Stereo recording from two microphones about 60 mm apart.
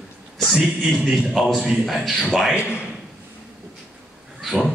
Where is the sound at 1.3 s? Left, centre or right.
Centre.